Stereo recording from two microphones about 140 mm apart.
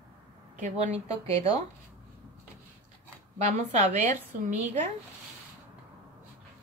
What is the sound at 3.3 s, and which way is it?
Speech, 55° right (ahead or behind).